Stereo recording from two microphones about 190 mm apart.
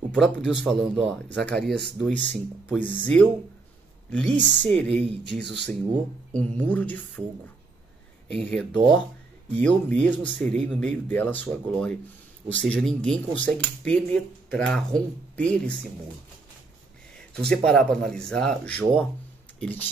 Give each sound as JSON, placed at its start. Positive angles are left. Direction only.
{"t": 0.1, "sound": "speech", "side_deg": 5}
{"t": 1.7, "sound": "speech", "side_deg": -60}
{"t": 2.0, "sound": "speech", "side_deg": 0}
{"t": 8.3, "sound": "speech", "side_deg": 5}
{"t": 17.1, "sound": "a sound", "side_deg": 5}
{"t": 17.6, "sound": "speech", "side_deg": 5}